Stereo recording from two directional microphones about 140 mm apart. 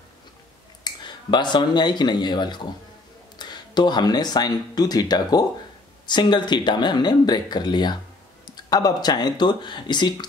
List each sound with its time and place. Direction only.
0.8 s speech: 30° left (ahead or behind)